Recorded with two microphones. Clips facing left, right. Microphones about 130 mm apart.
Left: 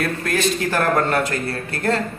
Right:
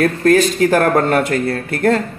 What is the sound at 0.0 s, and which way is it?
A man's voice, 50° right (ahead or behind).